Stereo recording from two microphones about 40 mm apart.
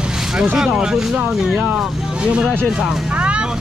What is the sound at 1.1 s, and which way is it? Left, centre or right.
Speech, right.